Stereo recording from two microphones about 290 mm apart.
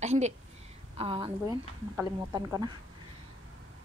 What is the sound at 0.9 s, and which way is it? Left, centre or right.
A woman's voice, centre.